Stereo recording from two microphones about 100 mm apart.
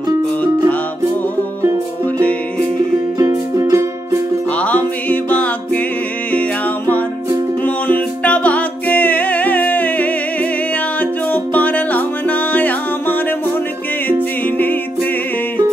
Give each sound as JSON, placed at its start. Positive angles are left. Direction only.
{"t": 3.2, "sound": "music", "side_deg": -35}
{"t": 4.6, "sound": "music", "side_deg": 15}
{"t": 7.6, "sound": "music", "side_deg": 15}